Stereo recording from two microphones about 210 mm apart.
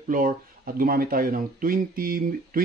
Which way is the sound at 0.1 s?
40° right (ahead or behind).